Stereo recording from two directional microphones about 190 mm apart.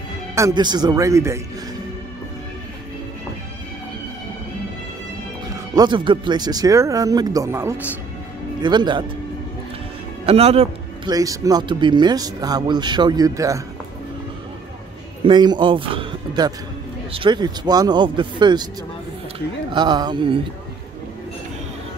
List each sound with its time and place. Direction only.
0.4 s speech: 20° right (ahead or behind)
5.8 s speech: 25° right (ahead or behind)
8.6 s speech: 25° right (ahead or behind)
10.2 s a man's voice: 30° right (ahead or behind)
11.1 s speech: 20° right (ahead or behind)
15.2 s speech: 25° right (ahead or behind)
19.7 s speech: 25° right (ahead or behind)